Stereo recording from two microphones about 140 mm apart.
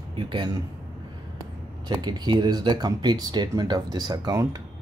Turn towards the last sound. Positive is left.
turn(degrees=-25)  # may be behind; listen again after turning